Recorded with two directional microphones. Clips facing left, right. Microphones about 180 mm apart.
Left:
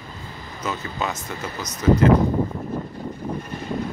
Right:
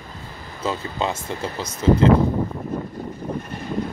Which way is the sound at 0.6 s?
30° right (ahead or behind).